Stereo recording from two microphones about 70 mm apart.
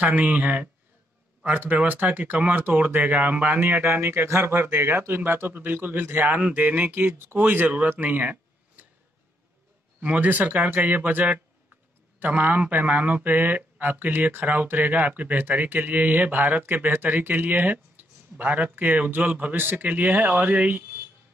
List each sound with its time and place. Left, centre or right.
0.0 s a man's voice: right
8.0 s a sound: right
9.9 s a man's voice: centre